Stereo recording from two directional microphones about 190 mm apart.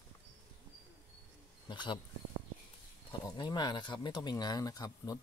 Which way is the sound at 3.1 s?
20° left (ahead or behind).